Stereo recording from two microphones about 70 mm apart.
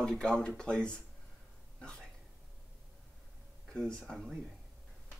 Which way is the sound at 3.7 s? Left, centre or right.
Centre.